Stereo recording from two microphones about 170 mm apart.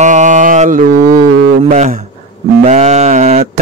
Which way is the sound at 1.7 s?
45° right (ahead or behind).